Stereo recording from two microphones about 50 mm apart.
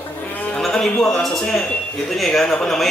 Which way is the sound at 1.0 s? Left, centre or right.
Centre.